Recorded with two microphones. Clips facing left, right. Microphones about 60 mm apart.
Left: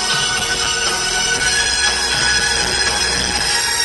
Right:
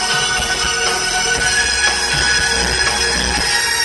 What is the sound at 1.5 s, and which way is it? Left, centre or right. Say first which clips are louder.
Music: right 2 dB; right.